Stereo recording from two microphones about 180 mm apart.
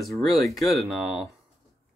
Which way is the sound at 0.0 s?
Centre (ahead or behind).